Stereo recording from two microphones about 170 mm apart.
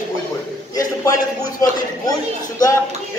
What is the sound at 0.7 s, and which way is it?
A man's voice, 20° left (ahead or behind).